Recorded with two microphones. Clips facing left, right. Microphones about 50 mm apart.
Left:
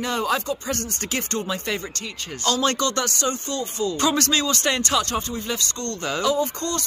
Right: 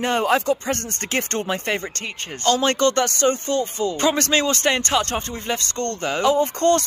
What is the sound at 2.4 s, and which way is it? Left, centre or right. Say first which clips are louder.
Speech: right 4 dB; right.